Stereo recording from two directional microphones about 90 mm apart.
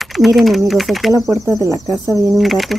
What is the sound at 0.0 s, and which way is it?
Speech, centre (ahead or behind).